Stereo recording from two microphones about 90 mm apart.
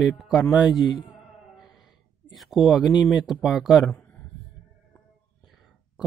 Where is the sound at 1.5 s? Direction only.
Centre (ahead or behind).